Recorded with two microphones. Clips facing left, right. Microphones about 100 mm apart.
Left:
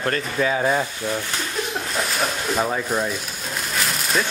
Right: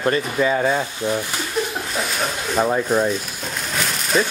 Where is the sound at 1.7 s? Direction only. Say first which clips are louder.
Even; centre (ahead or behind).